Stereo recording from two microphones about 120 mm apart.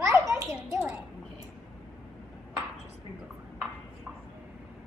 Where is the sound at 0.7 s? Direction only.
10° right (ahead or behind).